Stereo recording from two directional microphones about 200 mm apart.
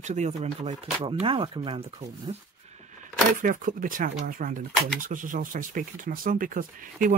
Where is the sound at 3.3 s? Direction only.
40° right (ahead or behind).